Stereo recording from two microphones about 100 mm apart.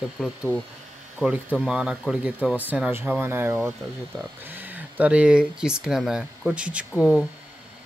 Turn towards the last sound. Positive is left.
turn(degrees=-5)  # may be behind; listen again after turning